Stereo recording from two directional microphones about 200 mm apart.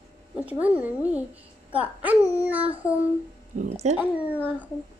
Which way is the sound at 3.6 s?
35° right (ahead or behind).